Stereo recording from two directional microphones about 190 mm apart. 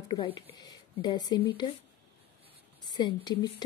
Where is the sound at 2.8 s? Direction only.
25° left (ahead or behind).